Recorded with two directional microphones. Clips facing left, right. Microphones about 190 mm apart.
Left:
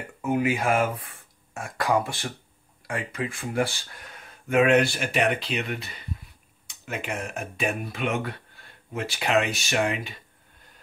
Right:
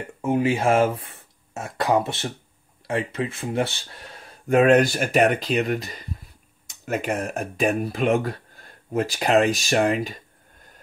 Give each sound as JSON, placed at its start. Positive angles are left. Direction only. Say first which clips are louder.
{"t": 0.2, "sound": "speech", "louder": "right 3 dB", "side_deg": -30}